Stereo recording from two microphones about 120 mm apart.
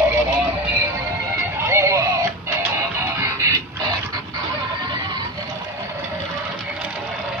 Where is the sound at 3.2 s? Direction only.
25° right (ahead or behind).